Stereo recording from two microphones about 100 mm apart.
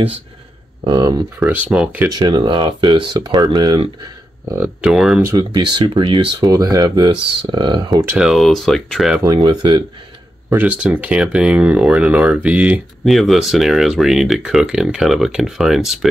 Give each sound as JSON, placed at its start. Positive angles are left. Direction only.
{"t": 0.8, "sound": "speech", "side_deg": -50}
{"t": 1.4, "sound": "speech", "side_deg": -15}
{"t": 2.0, "sound": "speech", "side_deg": -45}
{"t": 4.8, "sound": "speech", "side_deg": -5}
{"t": 5.4, "sound": "speech", "side_deg": -45}
{"t": 6.5, "sound": "speech", "side_deg": -35}
{"t": 8.2, "sound": "speech", "side_deg": 0}
{"t": 9.2, "sound": "speech", "side_deg": -40}
{"t": 10.5, "sound": "speech", "side_deg": -15}
{"t": 13.0, "sound": "speech", "side_deg": 0}